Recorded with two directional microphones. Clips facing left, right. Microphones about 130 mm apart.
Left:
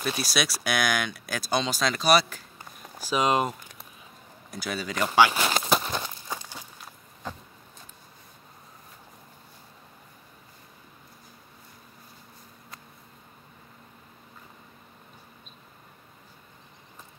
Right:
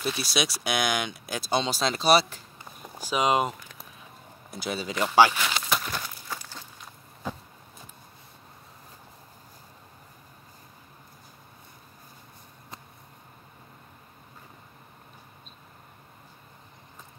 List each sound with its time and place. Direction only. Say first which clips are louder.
0.2 s speech: even; 20° right (ahead or behind)
3.0 s speech: even; 15° right (ahead or behind)
4.5 s speech: right 1 dB; 25° right (ahead or behind)
5.3 s walk: left 4 dB; 35° left (ahead or behind); by 6.6 s 20° left (ahead or behind)